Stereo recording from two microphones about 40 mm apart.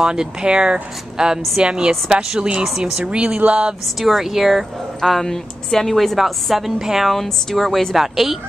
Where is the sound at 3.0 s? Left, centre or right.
Right.